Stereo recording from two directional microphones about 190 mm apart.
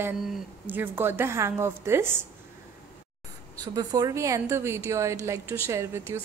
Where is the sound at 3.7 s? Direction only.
20° right (ahead or behind).